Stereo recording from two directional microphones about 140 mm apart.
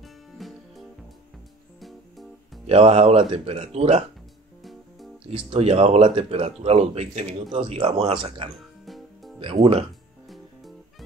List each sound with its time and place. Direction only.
0.0 s music: centre (ahead or behind)
2.6 s speech: 50° right (ahead or behind)
5.5 s speech: 45° right (ahead or behind)
8.8 s music: centre (ahead or behind)
9.4 s speech: 40° right (ahead or behind)
10.2 s music: centre (ahead or behind)